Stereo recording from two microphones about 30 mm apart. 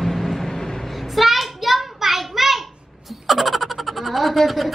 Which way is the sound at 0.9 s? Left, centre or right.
Centre.